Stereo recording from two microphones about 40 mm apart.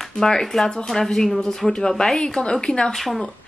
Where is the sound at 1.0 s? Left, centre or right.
Centre.